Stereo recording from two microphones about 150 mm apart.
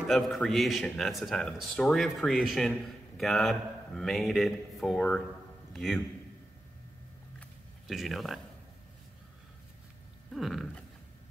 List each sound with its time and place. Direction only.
0.1 s a man's voice: centre (ahead or behind)
7.9 s speech: centre (ahead or behind)
10.3 s speech: centre (ahead or behind)